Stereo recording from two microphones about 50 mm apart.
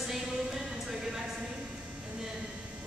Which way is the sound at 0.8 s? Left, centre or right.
Centre.